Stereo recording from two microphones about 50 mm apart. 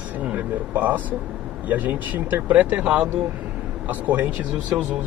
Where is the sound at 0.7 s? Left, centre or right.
Right.